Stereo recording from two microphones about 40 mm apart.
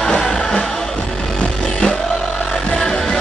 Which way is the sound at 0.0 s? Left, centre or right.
Centre.